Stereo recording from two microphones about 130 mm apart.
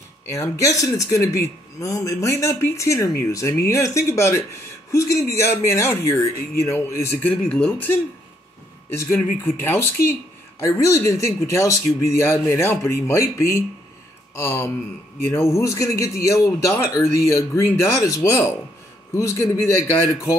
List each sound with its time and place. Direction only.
0.3 s speech: 25° left (ahead or behind)
8.9 s speech: 15° left (ahead or behind)